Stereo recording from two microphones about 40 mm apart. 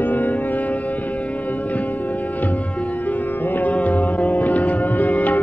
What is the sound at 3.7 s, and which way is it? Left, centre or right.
Music, left.